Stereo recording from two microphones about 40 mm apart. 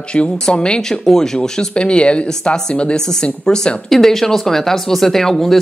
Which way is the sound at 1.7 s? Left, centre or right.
Left.